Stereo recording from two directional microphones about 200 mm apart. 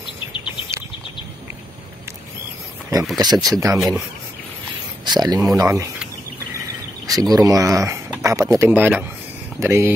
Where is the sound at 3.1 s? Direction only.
20° right (ahead or behind).